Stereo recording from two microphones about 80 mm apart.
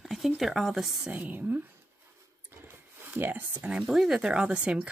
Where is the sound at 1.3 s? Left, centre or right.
Right.